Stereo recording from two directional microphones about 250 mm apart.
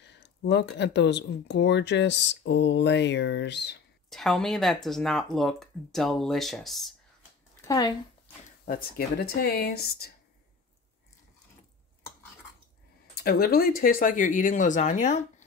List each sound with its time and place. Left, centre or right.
0.0 s speech: left
4.1 s speech: centre
7.6 s speech: centre
8.6 s speech: left
13.1 s speech: left